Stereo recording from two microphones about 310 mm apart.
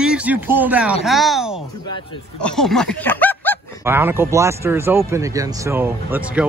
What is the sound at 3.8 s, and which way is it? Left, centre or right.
Speech, centre.